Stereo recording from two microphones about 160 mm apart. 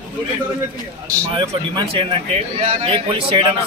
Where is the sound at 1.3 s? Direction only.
30° right (ahead or behind).